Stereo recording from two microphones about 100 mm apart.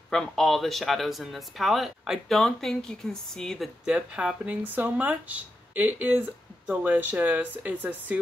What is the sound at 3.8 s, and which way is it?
Speech, 10° right (ahead or behind).